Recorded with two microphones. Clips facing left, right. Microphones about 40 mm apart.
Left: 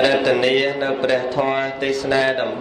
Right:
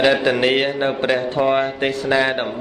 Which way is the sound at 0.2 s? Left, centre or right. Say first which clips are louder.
Left 1 dB; right.